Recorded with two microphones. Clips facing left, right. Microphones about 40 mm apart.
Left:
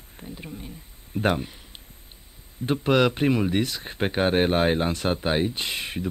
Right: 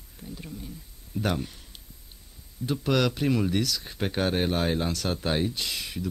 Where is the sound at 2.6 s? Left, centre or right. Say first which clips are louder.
Left 4 dB; left.